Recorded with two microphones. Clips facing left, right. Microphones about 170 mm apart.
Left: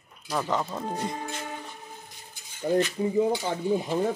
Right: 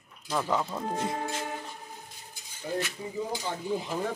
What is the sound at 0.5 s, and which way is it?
Speech, 5° left (ahead or behind).